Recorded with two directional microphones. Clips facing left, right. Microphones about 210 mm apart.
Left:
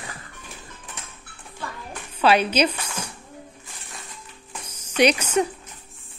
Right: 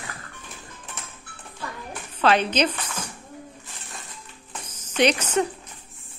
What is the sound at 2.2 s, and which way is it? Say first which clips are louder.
Speech: left 2 dB; 10° left (ahead or behind).